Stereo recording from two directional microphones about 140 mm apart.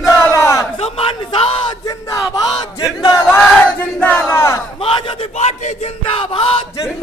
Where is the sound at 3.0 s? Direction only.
30° left (ahead or behind).